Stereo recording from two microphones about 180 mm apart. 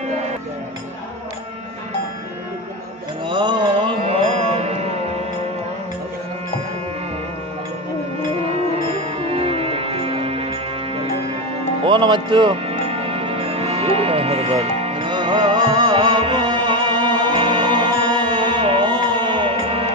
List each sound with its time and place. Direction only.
3.3 s mantra: 25° right (ahead or behind)
8.5 s music: 35° right (ahead or behind)